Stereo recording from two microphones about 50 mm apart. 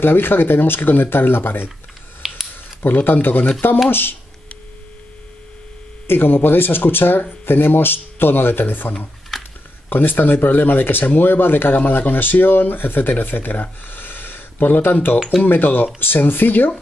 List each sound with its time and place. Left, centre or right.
0.0 s speech: left
2.2 s a sound: centre
2.8 s speech: left
6.0 s speech: left
9.3 s a sound: centre
9.8 s speech: left